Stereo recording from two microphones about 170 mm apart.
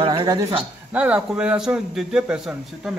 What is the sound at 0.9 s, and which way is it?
A man's voice, 5° right (ahead or behind).